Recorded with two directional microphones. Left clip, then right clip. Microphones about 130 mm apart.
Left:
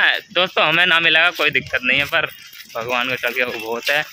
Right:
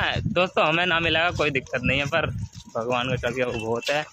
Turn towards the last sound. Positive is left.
turn(degrees=0)  # may be behind; listen again after turning